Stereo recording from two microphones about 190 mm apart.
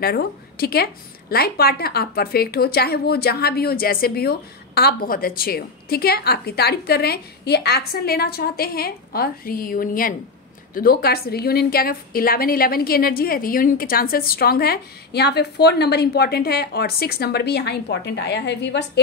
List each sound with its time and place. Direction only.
0.0 s a woman's voice: 55° left (ahead or behind)